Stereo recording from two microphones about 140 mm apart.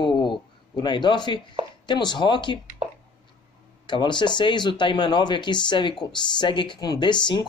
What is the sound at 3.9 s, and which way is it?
Speech, 35° left (ahead or behind).